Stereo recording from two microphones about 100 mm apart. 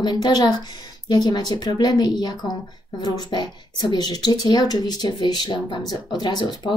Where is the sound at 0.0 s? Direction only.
45° left (ahead or behind).